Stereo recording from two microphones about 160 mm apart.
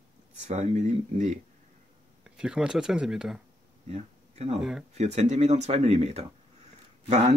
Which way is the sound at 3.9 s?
40° right (ahead or behind).